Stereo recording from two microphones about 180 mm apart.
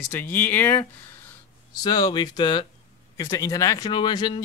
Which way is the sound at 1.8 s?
25° left (ahead or behind).